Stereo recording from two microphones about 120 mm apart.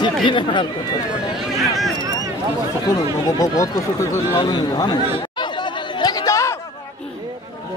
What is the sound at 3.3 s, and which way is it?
Speech, 30° left (ahead or behind).